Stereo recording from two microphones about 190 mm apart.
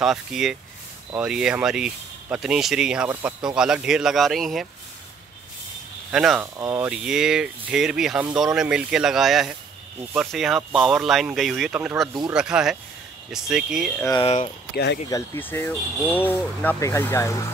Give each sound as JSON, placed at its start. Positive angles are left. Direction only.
{"t": 0.0, "sound": "speech", "side_deg": 0}
{"t": 6.1, "sound": "speech", "side_deg": 0}
{"t": 6.4, "sound": "speech", "side_deg": -15}
{"t": 6.9, "sound": "speech", "side_deg": -5}
{"t": 12.1, "sound": "speech", "side_deg": -25}
{"t": 12.4, "sound": "speech", "side_deg": -5}
{"t": 14.2, "sound": "speech", "side_deg": 30}
{"t": 15.0, "sound": "speech", "side_deg": 15}